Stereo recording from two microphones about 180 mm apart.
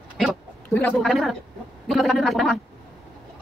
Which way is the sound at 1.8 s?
Centre (ahead or behind).